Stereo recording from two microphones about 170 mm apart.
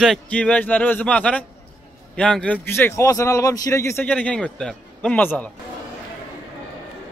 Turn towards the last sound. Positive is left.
turn(degrees=10)  # may be behind; listen again after turning